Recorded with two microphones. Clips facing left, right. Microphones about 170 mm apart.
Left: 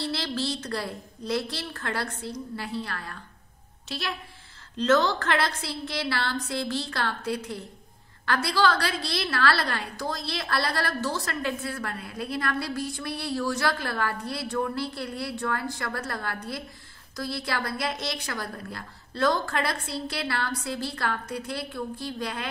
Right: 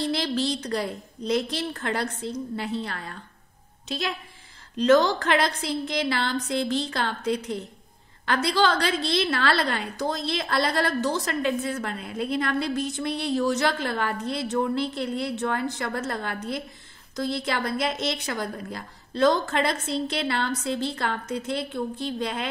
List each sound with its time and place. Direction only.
0.0 s a woman's voice: 15° right (ahead or behind)